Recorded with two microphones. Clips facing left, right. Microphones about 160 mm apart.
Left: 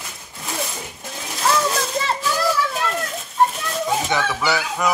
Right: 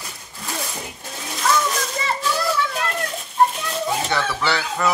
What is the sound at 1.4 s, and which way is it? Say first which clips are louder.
Splash: left 1 dB; 30° left (ahead or behind).